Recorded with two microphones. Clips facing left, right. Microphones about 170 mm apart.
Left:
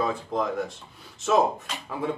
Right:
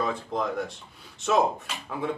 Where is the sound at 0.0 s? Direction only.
Centre (ahead or behind).